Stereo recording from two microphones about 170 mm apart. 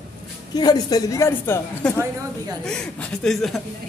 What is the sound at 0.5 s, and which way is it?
A man's voice, 25° left (ahead or behind).